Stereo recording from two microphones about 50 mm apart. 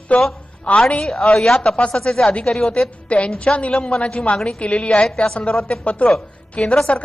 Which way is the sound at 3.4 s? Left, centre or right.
Left.